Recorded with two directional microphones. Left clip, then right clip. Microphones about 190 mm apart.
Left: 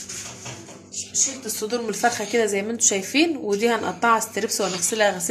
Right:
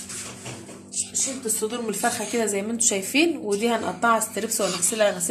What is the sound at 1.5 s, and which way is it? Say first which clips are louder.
A woman's voice: left 4 dB; 30° left (ahead or behind).